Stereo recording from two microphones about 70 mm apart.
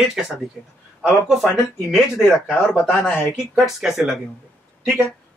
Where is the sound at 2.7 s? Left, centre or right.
Left.